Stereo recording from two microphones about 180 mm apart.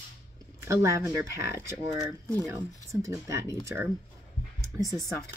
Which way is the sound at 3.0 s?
15° right (ahead or behind).